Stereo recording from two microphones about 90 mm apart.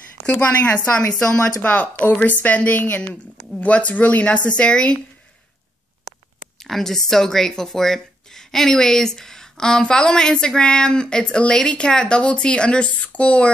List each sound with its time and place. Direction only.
0.3 s speech: 15° left (ahead or behind)
6.6 s speech: 5° left (ahead or behind)